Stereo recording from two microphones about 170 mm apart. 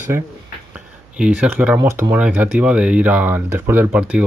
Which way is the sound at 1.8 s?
20° right (ahead or behind).